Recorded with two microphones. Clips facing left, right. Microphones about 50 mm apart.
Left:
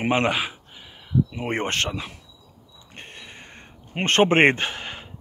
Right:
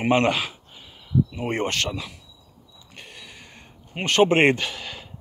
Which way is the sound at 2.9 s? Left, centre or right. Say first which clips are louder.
Left 2 dB; left.